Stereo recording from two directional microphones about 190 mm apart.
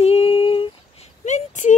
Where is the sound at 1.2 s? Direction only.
40° left (ahead or behind).